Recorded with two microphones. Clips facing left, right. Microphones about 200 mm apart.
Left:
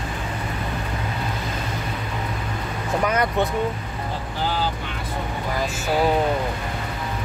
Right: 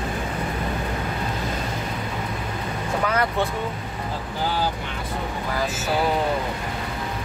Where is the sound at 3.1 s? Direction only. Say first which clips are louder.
Left 1 dB; 15° left (ahead or behind).